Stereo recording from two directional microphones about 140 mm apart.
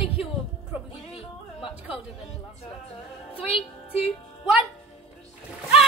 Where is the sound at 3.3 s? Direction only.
40° left (ahead or behind).